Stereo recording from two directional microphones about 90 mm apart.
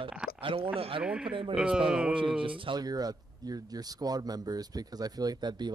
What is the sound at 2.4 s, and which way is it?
Speech, 70° right (ahead or behind).